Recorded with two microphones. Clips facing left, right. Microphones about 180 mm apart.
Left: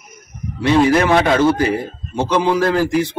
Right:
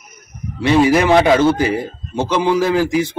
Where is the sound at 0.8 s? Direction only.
10° right (ahead or behind).